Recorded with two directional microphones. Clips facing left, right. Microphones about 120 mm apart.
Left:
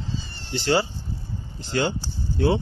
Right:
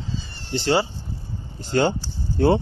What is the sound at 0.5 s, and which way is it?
Speech, 30° right (ahead or behind).